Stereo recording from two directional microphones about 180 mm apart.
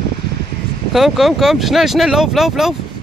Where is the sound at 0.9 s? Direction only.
Centre (ahead or behind).